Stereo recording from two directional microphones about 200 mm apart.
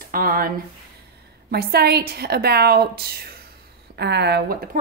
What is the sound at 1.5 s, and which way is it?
A woman's voice, 55° right (ahead or behind).